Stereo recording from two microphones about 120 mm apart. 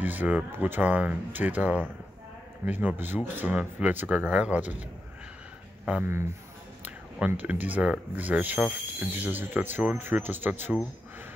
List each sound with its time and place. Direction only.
0.0 s speech: 15° right (ahead or behind)
6.8 s speech: 15° right (ahead or behind)